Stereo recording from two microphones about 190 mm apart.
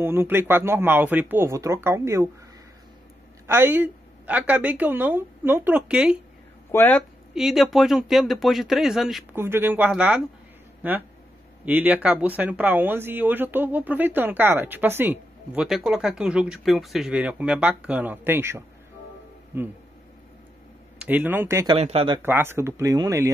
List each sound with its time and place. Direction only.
0.0 s speech: 10° right (ahead or behind)
3.4 s speech: 10° right (ahead or behind)
6.7 s speech: 10° left (ahead or behind)
7.3 s speech: centre (ahead or behind)
21.0 s speech: 10° right (ahead or behind)
21.7 s speech: 30° right (ahead or behind)
22.2 s speech: 10° right (ahead or behind)